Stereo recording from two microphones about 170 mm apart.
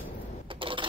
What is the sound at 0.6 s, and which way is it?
Sewing machine, 30° right (ahead or behind).